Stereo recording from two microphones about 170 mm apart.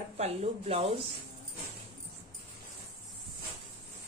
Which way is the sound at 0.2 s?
35° right (ahead or behind).